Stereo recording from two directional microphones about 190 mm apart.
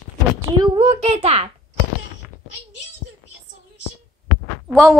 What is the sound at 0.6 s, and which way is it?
Speech, 30° right (ahead or behind).